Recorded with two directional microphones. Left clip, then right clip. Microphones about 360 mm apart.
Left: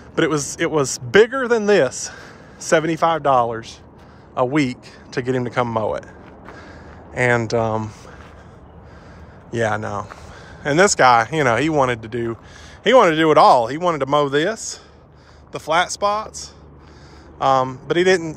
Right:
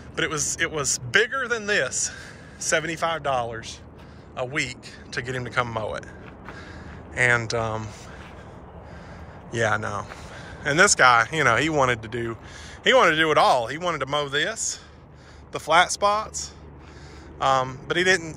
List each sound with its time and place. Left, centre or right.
0.2 s speech: left
7.2 s speech: centre
9.5 s speech: centre
15.5 s speech: centre